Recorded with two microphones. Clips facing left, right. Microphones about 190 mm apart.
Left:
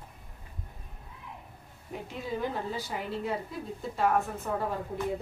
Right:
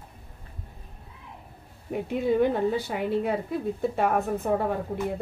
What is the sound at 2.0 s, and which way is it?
A woman's voice, 60° right (ahead or behind).